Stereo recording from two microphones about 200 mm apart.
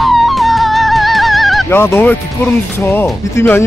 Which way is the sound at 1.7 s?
10° left (ahead or behind).